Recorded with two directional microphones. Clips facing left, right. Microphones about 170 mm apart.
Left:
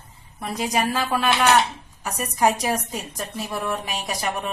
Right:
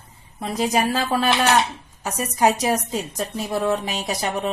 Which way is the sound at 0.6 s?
30° right (ahead or behind).